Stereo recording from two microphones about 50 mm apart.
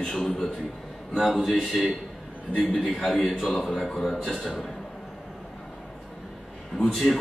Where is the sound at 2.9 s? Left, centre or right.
Centre.